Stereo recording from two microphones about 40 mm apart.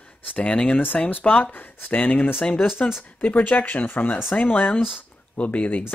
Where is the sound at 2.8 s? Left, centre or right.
Left.